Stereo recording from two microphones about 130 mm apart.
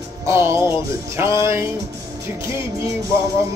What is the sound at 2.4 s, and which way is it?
Speech, 20° right (ahead or behind).